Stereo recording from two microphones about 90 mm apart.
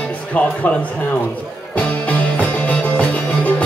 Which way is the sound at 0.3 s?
15° left (ahead or behind).